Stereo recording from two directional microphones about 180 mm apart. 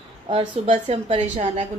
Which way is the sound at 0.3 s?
30° right (ahead or behind).